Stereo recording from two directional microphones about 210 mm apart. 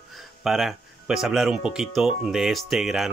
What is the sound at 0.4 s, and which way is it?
Speech, centre (ahead or behind).